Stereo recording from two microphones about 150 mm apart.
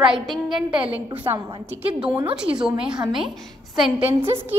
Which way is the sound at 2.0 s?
35° right (ahead or behind).